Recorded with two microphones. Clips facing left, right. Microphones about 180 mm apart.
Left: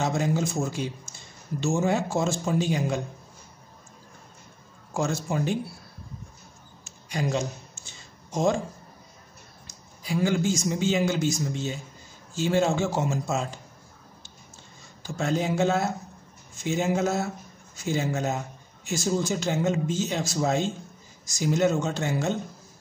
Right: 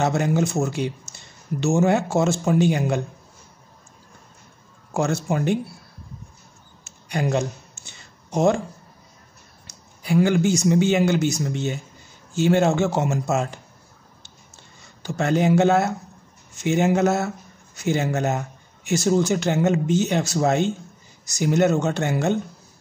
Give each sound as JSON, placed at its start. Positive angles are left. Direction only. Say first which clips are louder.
{"t": 0.0, "sound": "speech", "louder": "right 5 dB", "side_deg": -65}
{"t": 4.9, "sound": "speech", "louder": "right 4 dB", "side_deg": -65}
{"t": 7.1, "sound": "a sound", "louder": "right 4 dB", "side_deg": -60}
{"t": 9.7, "sound": "a man's voice", "louder": "right 7 dB", "side_deg": -65}
{"t": 15.0, "sound": "speech", "louder": "right 6 dB", "side_deg": -70}